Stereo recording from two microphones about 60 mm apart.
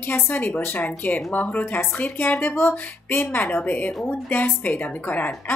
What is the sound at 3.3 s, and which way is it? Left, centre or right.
A woman's voice, left.